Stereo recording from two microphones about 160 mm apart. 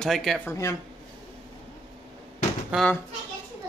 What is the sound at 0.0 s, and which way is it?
Speech, centre (ahead or behind).